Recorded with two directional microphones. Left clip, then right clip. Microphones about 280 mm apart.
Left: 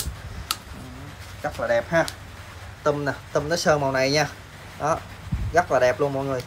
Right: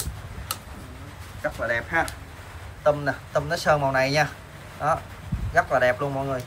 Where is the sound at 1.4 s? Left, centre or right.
Centre.